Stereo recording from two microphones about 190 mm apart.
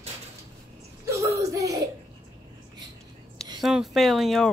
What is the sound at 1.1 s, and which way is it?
Whimper, 15° right (ahead or behind).